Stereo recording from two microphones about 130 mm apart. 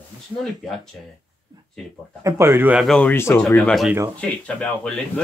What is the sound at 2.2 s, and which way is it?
Speech, 20° right (ahead or behind).